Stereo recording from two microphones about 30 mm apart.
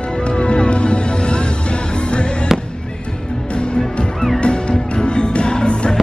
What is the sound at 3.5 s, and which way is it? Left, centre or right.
Music, left.